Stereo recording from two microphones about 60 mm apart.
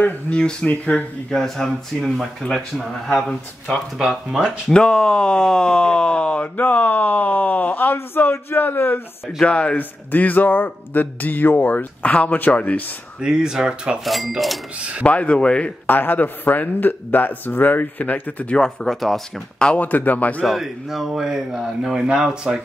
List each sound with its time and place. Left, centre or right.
0.0 s speech: left
0.4 s speech: centre
0.7 s speech: left
1.3 s speech: centre
4.0 s speech: centre
4.6 s speech: centre; by 9.0 s left
9.4 s speech: centre
9.8 s speech: left
13.2 s speech: centre
14.8 s speech: right
15.0 s speech: left
15.9 s speech: left; by 19.2 s centre
19.6 s speech: centre
20.4 s speech: centre